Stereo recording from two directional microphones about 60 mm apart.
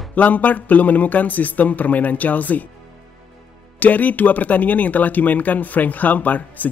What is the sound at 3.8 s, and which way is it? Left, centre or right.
Speech, left.